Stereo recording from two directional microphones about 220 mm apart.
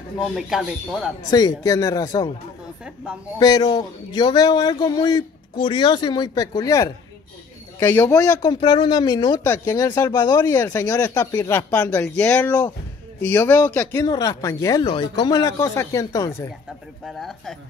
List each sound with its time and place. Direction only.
0.2 s speech: centre (ahead or behind)
1.3 s speech: 15° left (ahead or behind)
3.3 s speech: 20° left (ahead or behind)
17.0 s speech: centre (ahead or behind)